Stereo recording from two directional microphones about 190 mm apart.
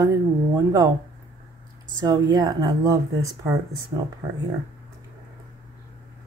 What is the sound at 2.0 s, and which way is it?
Speech, 20° right (ahead or behind).